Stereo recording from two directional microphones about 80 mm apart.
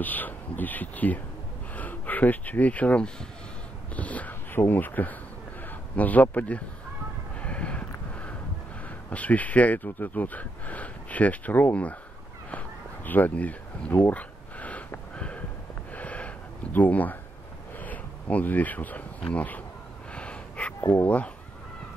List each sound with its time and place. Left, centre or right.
0.0 s a man's voice: left
7.3 s a sound: centre
8.8 s speech: centre
12.4 s a sound: left
17.7 s speech: left
20.1 s gasp: centre
21.0 s speech: centre